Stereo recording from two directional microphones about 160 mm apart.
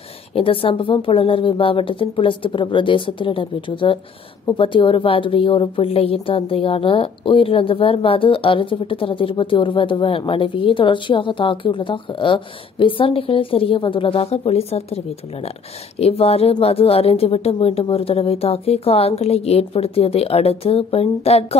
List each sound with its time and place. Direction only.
0.3 s a woman's voice: 35° left (ahead or behind)